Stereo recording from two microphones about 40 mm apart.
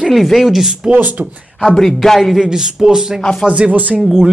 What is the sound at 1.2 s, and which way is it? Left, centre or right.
Speech, right.